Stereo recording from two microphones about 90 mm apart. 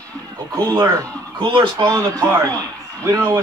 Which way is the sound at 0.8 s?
40° right (ahead or behind).